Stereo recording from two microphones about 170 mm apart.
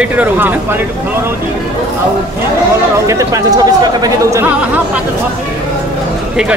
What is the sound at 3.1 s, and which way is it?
Speech, 20° right (ahead or behind).